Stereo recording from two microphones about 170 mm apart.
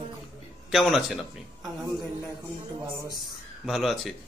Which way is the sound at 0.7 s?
Centre (ahead or behind).